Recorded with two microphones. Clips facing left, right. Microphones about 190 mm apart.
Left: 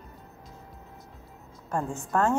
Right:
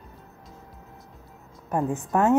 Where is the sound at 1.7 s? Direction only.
20° right (ahead or behind).